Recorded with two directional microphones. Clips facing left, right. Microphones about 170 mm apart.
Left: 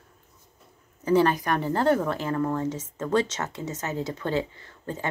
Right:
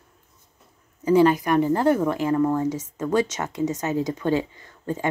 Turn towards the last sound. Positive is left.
turn(degrees=-15)  # may be behind; listen again after turning